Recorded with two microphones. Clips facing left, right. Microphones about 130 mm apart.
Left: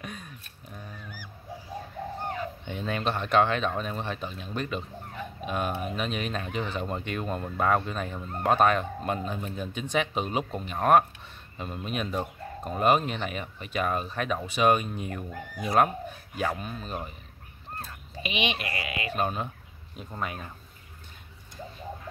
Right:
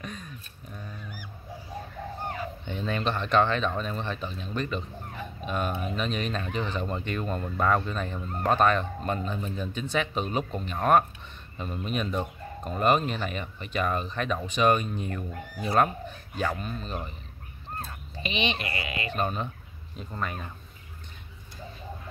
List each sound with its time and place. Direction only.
0.0 s a sound: 10° left (ahead or behind)
2.6 s speech: 5° left (ahead or behind)
18.1 s speech: 10° left (ahead or behind)